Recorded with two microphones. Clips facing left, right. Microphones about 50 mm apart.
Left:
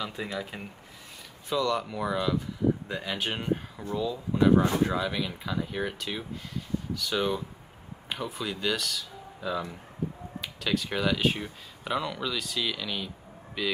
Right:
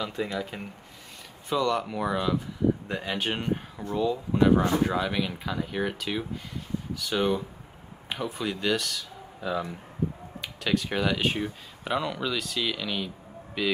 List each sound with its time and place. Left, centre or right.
0.0 s speech: centre
3.2 s speech: centre
3.9 s speech: centre